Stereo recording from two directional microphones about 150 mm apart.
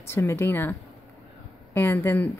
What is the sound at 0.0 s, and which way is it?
Speech, 15° left (ahead or behind).